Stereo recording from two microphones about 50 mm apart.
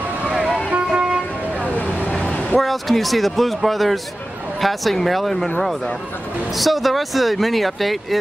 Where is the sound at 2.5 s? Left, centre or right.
Centre.